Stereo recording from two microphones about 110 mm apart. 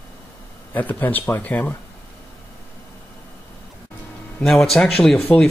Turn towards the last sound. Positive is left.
turn(degrees=5)  # may be behind; listen again after turning